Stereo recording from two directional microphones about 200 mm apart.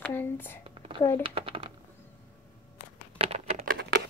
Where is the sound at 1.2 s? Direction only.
25° right (ahead or behind).